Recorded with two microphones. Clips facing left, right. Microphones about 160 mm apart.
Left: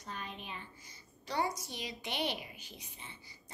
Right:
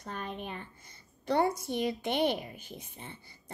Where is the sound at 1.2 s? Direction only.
55° right (ahead or behind).